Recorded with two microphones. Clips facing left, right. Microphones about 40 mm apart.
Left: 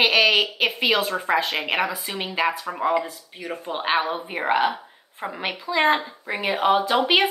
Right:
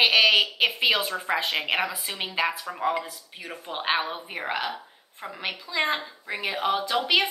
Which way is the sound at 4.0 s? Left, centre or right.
Centre.